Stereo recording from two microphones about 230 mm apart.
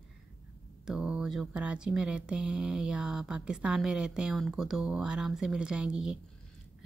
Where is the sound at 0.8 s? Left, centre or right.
Centre.